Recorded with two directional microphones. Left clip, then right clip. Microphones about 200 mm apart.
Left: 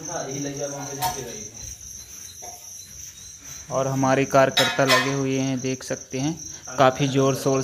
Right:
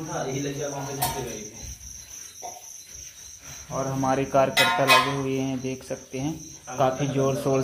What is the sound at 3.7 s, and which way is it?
Cricket, 40° left (ahead or behind).